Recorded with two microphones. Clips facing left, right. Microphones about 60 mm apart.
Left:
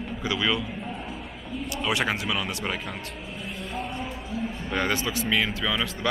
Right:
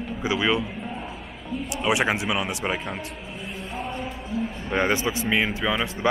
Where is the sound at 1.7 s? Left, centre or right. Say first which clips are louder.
Right 4 dB; right.